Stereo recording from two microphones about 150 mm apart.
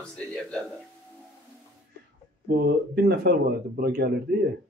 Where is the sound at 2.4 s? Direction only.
90° right.